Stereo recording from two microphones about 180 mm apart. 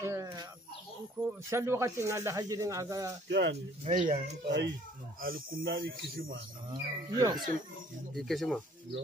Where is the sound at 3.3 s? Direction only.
70° right (ahead or behind).